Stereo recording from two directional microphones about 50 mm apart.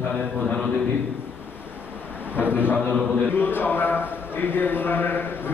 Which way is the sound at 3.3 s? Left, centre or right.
Left.